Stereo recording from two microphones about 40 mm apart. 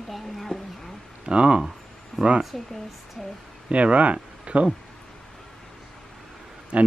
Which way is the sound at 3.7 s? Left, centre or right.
Right.